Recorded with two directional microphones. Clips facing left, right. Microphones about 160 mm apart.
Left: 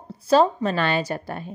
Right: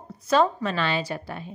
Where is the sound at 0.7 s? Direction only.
50° left (ahead or behind).